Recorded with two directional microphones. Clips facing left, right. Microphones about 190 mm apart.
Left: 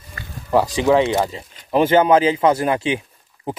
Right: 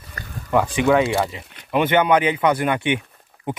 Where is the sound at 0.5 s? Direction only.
35° left (ahead or behind).